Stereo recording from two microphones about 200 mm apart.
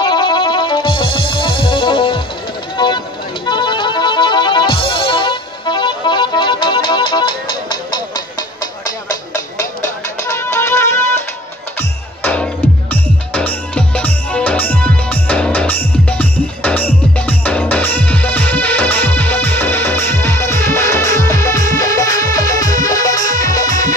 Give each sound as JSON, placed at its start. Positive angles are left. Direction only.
{"t": 0.0, "sound": "music", "side_deg": 25}
{"t": 2.8, "sound": "a sound", "side_deg": 25}
{"t": 3.4, "sound": "music", "side_deg": 25}
{"t": 9.8, "sound": "music", "side_deg": 15}
{"t": 12.2, "sound": "music", "side_deg": 10}